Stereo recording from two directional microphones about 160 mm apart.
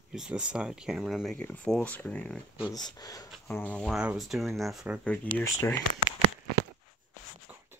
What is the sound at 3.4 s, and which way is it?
Speech, 10° left (ahead or behind).